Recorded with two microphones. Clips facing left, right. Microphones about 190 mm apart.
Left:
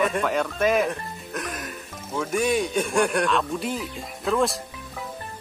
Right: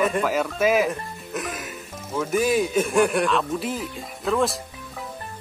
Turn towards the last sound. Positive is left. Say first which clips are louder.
# even
turn(degrees=0)  # may be behind; listen again after turning